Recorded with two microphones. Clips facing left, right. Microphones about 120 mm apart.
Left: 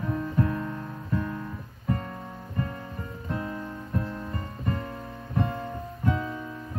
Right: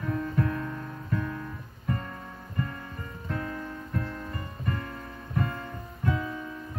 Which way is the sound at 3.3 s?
25° left (ahead or behind).